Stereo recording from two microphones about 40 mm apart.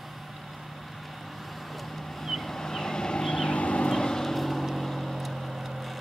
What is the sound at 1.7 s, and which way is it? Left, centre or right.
Vehicle, centre.